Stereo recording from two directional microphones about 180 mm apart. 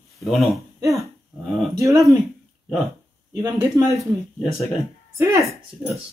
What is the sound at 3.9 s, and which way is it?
Speech, centre (ahead or behind).